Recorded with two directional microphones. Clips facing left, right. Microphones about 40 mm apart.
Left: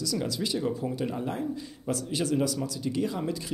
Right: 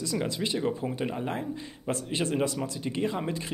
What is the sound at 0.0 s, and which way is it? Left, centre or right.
Speech, right.